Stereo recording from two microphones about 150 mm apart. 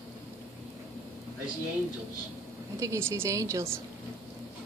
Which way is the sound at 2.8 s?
20° right (ahead or behind).